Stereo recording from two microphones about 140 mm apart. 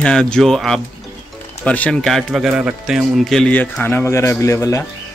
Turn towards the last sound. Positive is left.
turn(degrees=20)  # may be behind; listen again after turning